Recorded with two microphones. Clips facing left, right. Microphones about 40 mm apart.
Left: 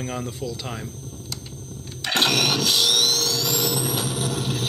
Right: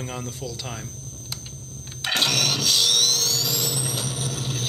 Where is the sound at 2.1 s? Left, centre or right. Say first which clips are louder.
Left 3 dB; centre.